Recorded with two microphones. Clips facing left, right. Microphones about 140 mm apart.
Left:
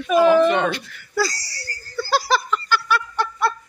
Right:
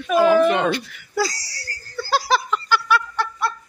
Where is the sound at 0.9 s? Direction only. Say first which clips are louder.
Even; 15° right (ahead or behind).